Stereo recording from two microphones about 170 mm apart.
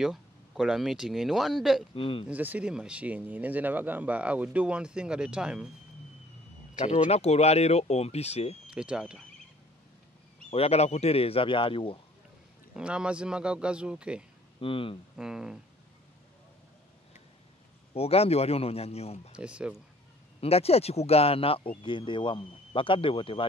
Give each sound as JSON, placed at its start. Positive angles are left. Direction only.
{"t": 0.0, "sound": "speech", "side_deg": -5}
{"t": 2.0, "sound": "speech", "side_deg": 30}
{"t": 2.2, "sound": "speech", "side_deg": -10}
{"t": 6.8, "sound": "speech", "side_deg": 40}
{"t": 8.6, "sound": "speech", "side_deg": -5}
{"t": 10.5, "sound": "speech", "side_deg": 35}
{"t": 12.7, "sound": "speech", "side_deg": -5}
{"t": 14.6, "sound": "speech", "side_deg": 30}
{"t": 15.1, "sound": "speech", "side_deg": -5}
{"t": 17.9, "sound": "speech", "side_deg": 35}
{"t": 19.3, "sound": "speech", "side_deg": -5}
{"t": 20.3, "sound": "speech", "side_deg": 35}